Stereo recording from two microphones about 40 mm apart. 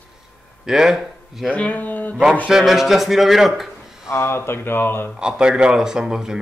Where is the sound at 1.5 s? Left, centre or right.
Left.